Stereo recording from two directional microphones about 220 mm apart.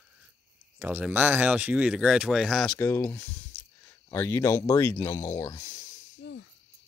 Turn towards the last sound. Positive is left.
turn(degrees=55)  # may be behind; listen again after turning